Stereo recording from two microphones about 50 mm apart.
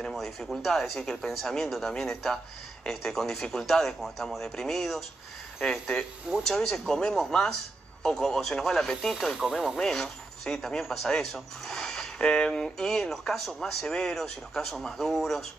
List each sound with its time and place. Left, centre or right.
0.1 s speech: centre
9.4 s speech: centre
9.8 s speech: centre